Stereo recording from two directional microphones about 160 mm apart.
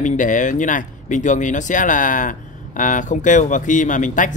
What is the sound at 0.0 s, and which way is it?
Speech, 50° left (ahead or behind).